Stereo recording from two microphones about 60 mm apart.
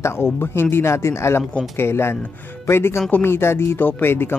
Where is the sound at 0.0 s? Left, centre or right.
Left.